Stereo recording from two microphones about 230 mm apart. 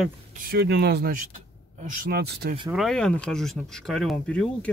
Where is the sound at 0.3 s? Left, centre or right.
Right.